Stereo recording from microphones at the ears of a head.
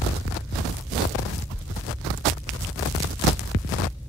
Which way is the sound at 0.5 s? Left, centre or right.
Right.